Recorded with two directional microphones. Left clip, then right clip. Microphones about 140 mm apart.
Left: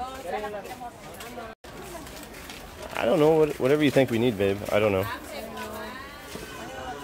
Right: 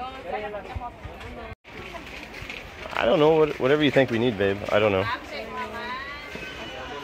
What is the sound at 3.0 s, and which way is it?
Speech, 15° left (ahead or behind).